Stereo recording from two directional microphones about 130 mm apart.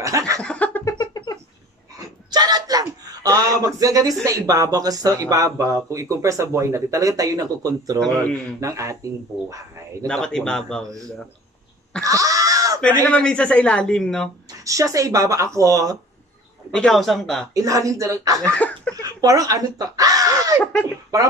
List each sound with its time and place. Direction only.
0.0 s laughter: 25° right (ahead or behind)
0.4 s laughter: 10° left (ahead or behind)
0.8 s cat: 30° left (ahead or behind)
2.0 s speech: 30° right (ahead or behind)
10.0 s speech: 5° left (ahead or behind)
12.0 s a sound: 25° right (ahead or behind)
13.0 s speech: 10° left (ahead or behind)
14.6 s speech: 25° right (ahead or behind)
16.7 s speech: 5° left (ahead or behind)
17.6 s speech: 25° right (ahead or behind)
18.9 s a sound: 25° right (ahead or behind)